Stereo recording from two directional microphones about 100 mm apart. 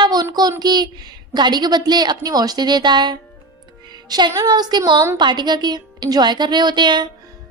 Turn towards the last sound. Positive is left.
turn(degrees=-50)  # may be behind; listen again after turning